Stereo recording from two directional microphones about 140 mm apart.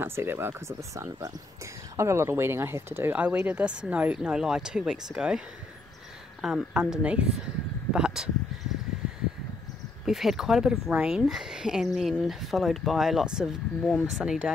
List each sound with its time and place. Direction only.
0.0 s speech: 15° right (ahead or behind)
6.4 s speech: 5° right (ahead or behind)
7.9 s a sound: 5° right (ahead or behind)
10.0 s speech: centre (ahead or behind)